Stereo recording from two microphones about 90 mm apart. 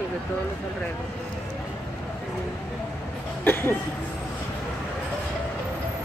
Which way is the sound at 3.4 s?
25° left (ahead or behind).